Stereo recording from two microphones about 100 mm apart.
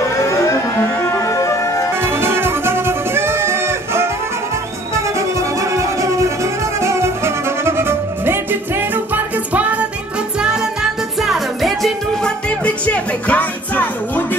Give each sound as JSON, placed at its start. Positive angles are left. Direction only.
{"t": 0.1, "sound": "a sound", "side_deg": 30}
{"t": 1.1, "sound": "music", "side_deg": 30}
{"t": 2.0, "sound": "music", "side_deg": -25}
{"t": 5.6, "sound": "music", "side_deg": -30}
{"t": 12.4, "sound": "music", "side_deg": 15}